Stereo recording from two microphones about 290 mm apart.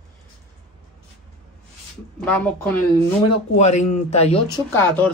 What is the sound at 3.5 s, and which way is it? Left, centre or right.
Speech, left.